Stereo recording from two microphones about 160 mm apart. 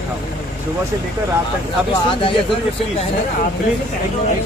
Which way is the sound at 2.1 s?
35° left (ahead or behind).